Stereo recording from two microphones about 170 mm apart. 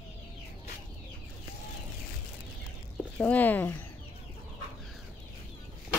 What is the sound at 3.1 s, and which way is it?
Speech, 10° left (ahead or behind).